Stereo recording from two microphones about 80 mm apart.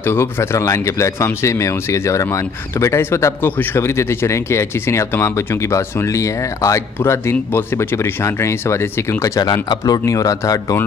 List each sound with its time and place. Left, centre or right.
0.0 s speech: left
9.4 s speech: left